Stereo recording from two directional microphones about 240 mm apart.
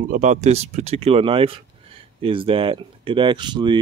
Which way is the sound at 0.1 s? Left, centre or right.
Right.